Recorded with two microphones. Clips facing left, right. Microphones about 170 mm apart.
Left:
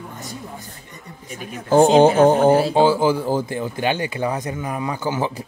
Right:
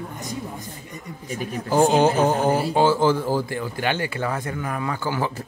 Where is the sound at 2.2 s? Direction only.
50° left (ahead or behind).